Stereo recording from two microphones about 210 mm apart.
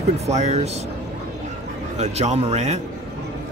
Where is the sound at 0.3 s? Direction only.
30° right (ahead or behind).